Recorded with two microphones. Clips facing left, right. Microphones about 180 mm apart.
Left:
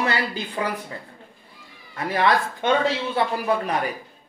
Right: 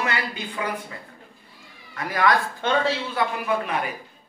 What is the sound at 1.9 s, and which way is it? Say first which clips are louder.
Speech: left 1 dB; 25° left (ahead or behind).